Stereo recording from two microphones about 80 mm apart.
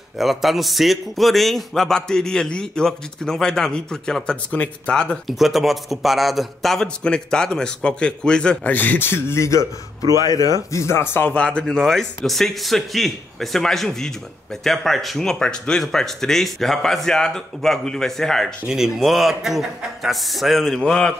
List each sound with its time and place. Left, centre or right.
0.2 s a man's voice: centre
5.3 s a man's voice: centre
8.7 s speech: left
10.2 s speech: left
11.2 s speech: centre